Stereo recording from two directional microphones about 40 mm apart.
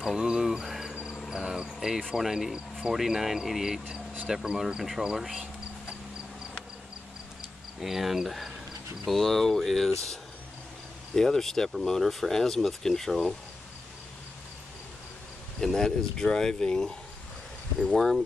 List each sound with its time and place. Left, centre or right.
0.0 s speech: centre
0.5 s insect: centre
1.3 s speech: centre
7.8 s speech: centre
11.1 s speech: centre
15.6 s speech: centre
17.9 s speech: centre